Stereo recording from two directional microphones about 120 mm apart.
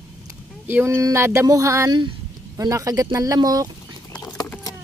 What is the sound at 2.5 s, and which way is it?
Speech, 30° right (ahead or behind).